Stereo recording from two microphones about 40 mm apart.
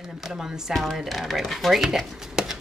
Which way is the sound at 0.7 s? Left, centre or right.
Centre.